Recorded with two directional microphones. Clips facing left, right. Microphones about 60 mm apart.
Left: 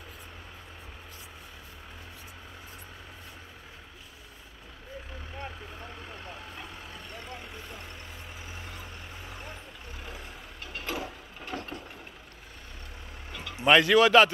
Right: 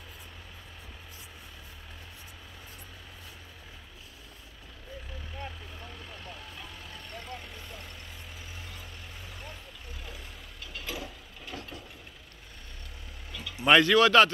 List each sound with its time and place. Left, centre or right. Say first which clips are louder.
5.4 s vehicle: left 2 dB; left
9.3 s vehicle: left 2 dB; left
10.6 s a sound: left 4 dB; left
13.3 s vehicle: left 1 dB; left
13.7 s a man's voice: left 1 dB; centre